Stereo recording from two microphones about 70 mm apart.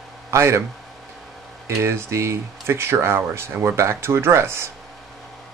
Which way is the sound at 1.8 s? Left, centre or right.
Right.